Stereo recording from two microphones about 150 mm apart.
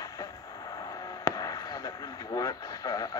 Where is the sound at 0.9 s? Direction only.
25° left (ahead or behind).